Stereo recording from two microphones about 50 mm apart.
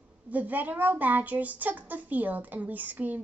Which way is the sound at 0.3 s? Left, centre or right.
Right.